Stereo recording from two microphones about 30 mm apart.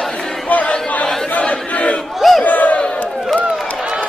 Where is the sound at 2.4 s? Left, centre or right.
Left.